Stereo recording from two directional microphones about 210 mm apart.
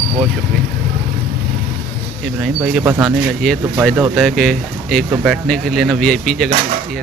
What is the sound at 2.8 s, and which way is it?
Speech, 10° right (ahead or behind).